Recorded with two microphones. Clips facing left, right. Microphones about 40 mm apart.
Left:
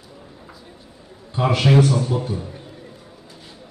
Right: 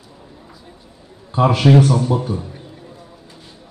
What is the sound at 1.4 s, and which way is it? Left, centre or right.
Speech, right.